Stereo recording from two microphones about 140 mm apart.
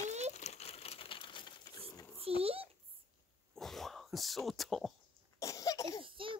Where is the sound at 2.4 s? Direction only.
45° right (ahead or behind).